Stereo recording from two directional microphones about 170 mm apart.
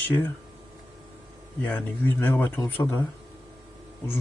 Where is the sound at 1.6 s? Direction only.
10° left (ahead or behind).